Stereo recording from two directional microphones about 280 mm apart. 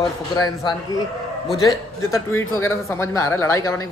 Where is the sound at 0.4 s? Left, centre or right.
Centre.